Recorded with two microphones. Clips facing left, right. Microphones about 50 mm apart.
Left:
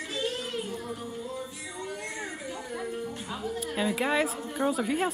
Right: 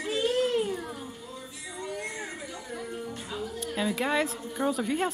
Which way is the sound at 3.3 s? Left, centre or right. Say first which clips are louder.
Left 1 dB; centre.